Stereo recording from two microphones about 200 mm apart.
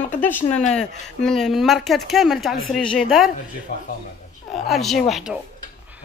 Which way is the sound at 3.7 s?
45° left (ahead or behind).